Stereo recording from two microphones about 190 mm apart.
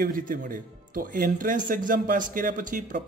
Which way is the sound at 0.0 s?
45° right (ahead or behind).